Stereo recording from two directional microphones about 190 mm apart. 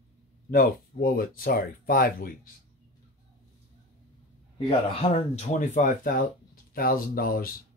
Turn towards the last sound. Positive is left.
turn(degrees=50)  # may be behind; listen again after turning